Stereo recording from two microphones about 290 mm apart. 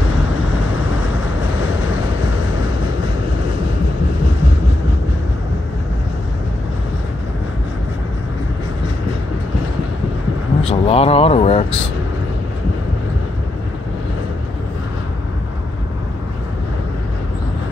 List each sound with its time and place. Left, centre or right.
10.6 s speech: centre